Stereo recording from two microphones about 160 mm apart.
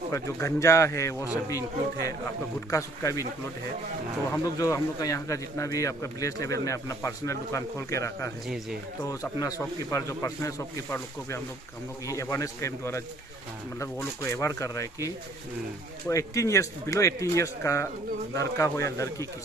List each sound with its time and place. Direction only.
0.1 s a man's voice: 15° left (ahead or behind)
2.7 s speech: 20° left (ahead or behind)
4.3 s a man's voice: 20° left (ahead or behind)
16.1 s speech: 20° left (ahead or behind)